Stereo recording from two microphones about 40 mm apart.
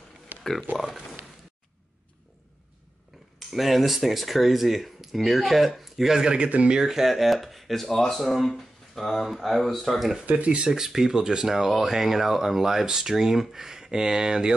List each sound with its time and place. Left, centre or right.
0.4 s a sound: centre
3.3 s speech: centre; by 6.5 s right
6.9 s speech: centre
10.3 s speech: right
10.7 s speech: centre